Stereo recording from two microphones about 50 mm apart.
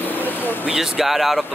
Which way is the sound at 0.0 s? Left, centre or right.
Left.